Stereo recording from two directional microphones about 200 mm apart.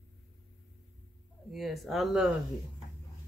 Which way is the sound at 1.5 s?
Centre (ahead or behind).